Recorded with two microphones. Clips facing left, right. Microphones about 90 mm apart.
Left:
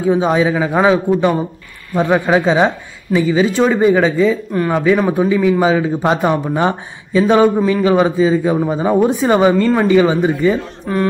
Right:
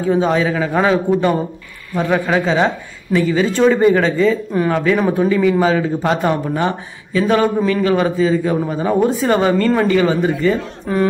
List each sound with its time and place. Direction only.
0.1 s a man's voice: 15° left (ahead or behind)
6.5 s a man's voice: 25° left (ahead or behind)